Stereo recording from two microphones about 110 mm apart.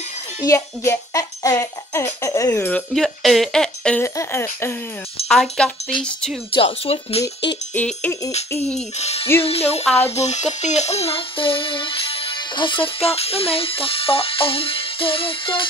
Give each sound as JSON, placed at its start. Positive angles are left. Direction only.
{"t": 0.5, "sound": "music", "side_deg": 30}
{"t": 2.9, "sound": "speech", "side_deg": 0}
{"t": 4.0, "sound": "music", "side_deg": 25}
{"t": 5.3, "sound": "music", "side_deg": 5}
{"t": 6.5, "sound": "speech", "side_deg": 60}
{"t": 7.7, "sound": "music", "side_deg": 10}
{"t": 8.9, "sound": "music", "side_deg": 75}
{"t": 9.4, "sound": "music", "side_deg": 65}
{"t": 10.1, "sound": "speech", "side_deg": 90}